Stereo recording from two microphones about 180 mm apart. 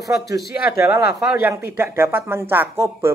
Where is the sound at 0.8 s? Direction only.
10° right (ahead or behind).